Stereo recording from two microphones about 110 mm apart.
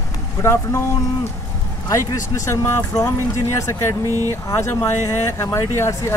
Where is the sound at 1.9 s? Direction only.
30° left (ahead or behind).